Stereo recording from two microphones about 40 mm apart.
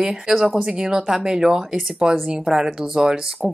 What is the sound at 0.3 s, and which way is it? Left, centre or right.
Speech, centre.